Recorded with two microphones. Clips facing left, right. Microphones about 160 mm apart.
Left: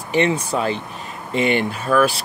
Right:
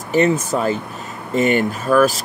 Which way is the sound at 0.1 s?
40° right (ahead or behind).